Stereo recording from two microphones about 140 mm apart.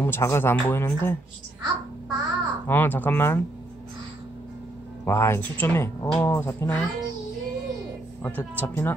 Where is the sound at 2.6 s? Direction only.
15° left (ahead or behind).